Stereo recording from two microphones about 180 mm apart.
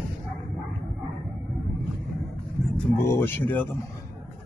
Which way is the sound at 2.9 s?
15° left (ahead or behind).